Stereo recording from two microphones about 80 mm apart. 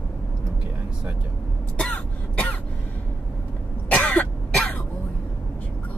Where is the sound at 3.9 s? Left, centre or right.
Centre.